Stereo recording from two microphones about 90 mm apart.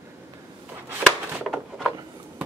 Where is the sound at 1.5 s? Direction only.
10° right (ahead or behind).